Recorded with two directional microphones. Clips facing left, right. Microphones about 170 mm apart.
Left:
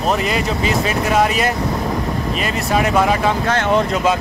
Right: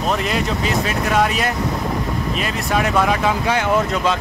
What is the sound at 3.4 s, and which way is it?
Speech, 10° right (ahead or behind).